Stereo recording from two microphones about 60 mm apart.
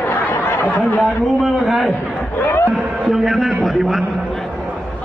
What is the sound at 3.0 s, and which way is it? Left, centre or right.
Speech, centre.